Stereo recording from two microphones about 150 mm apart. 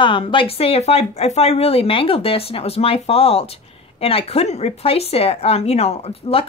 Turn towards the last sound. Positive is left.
turn(degrees=40)  # may be behind; listen again after turning